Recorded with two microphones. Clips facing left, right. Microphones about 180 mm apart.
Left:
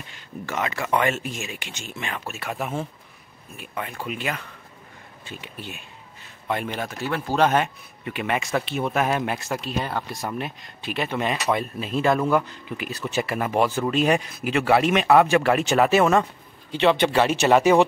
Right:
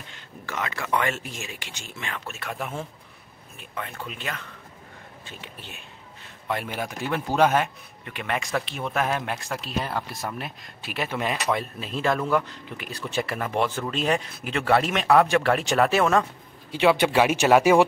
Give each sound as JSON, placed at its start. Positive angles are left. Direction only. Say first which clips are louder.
{"t": 0.5, "sound": "speech", "louder": "left 3 dB", "side_deg": 20}
{"t": 6.5, "sound": "speech", "louder": "left 2 dB", "side_deg": -5}
{"t": 16.7, "sound": "speech", "louder": "even", "side_deg": -10}